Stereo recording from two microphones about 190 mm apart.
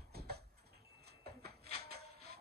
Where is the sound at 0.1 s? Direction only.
55° right (ahead or behind).